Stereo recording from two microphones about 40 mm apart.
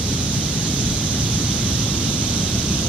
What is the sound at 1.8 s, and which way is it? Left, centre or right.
Pink noise, left.